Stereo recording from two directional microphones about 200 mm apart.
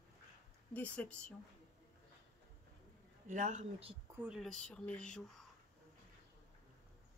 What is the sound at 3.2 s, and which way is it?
Speech, 40° right (ahead or behind).